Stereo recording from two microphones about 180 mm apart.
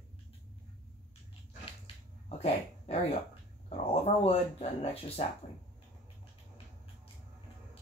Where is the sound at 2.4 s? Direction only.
35° left (ahead or behind).